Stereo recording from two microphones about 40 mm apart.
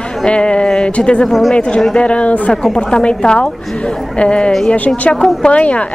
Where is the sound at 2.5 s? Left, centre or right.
Centre.